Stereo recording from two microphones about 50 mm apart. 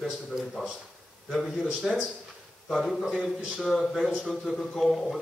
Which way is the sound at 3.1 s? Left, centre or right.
Centre.